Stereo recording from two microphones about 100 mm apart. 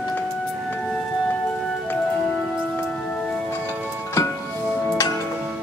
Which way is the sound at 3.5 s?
25° left (ahead or behind).